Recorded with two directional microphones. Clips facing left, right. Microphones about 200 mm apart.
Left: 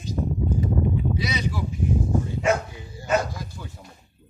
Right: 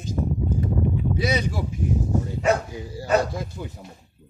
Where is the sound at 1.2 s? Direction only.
50° right (ahead or behind).